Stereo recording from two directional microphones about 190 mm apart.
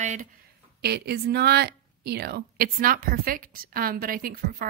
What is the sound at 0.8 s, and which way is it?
A woman's voice, 60° right (ahead or behind).